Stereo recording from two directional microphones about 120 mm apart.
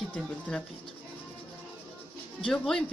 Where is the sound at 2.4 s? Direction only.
5° left (ahead or behind).